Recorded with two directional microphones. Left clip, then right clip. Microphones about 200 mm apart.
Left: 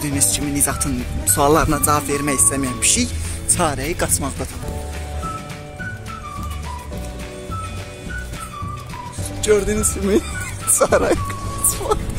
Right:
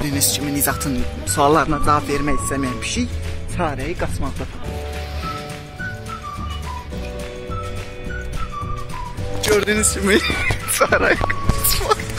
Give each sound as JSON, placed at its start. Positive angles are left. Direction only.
{"t": 0.0, "sound": "speech", "side_deg": 5}
{"t": 3.5, "sound": "speech", "side_deg": 20}
{"t": 9.4, "sound": "speech", "side_deg": 5}
{"t": 10.8, "sound": "speech", "side_deg": 15}
{"t": 11.6, "sound": "speech", "side_deg": 0}